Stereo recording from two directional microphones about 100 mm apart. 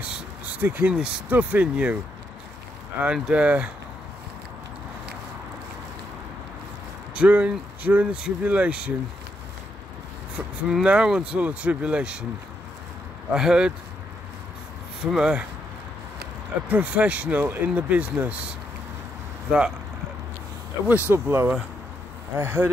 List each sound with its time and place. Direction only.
0.0 s a sound: 10° right (ahead or behind)
0.7 s speech: 20° right (ahead or behind)
3.0 s speech: 10° right (ahead or behind)
7.2 s speech: 15° right (ahead or behind)
10.3 s speech: 10° right (ahead or behind)
13.3 s speech: 5° right (ahead or behind)
15.0 s speech: 5° right (ahead or behind)
16.6 s speech: 15° right (ahead or behind)
20.9 s speech: 25° right (ahead or behind)